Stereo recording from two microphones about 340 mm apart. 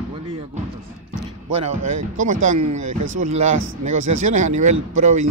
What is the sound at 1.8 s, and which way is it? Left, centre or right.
Speech, right.